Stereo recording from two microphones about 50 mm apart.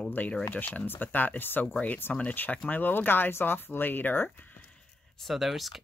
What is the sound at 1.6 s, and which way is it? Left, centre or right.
Speech, left.